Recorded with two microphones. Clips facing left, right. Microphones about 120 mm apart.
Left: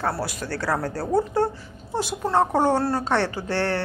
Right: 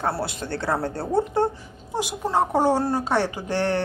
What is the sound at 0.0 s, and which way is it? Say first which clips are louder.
Speech: even; 25° right (ahead or behind).